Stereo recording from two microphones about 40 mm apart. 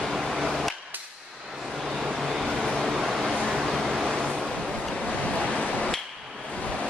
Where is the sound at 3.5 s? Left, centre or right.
Centre.